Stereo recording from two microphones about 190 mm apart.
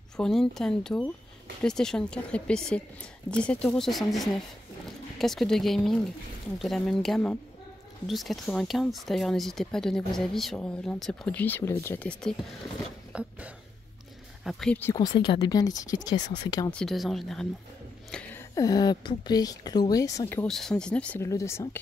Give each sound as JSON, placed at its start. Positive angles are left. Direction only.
{"t": 0.2, "sound": "speech", "side_deg": 0}
{"t": 13.1, "sound": "a sound", "side_deg": -5}
{"t": 14.4, "sound": "speech", "side_deg": 0}
{"t": 15.1, "sound": "speech", "side_deg": 25}
{"t": 16.7, "sound": "speech", "side_deg": 0}
{"t": 18.1, "sound": "a sound", "side_deg": 5}
{"t": 18.5, "sound": "speech", "side_deg": 20}
{"t": 20.4, "sound": "speech", "side_deg": 0}